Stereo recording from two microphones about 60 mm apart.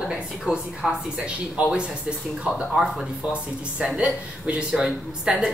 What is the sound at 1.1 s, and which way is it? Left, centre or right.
Speech, centre.